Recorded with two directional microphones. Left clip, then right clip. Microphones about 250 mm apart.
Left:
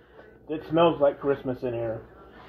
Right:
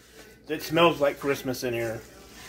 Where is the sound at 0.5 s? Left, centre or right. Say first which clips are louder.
Even; centre.